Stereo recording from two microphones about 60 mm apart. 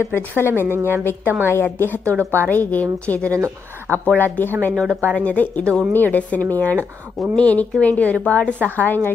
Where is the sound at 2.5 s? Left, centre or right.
Left.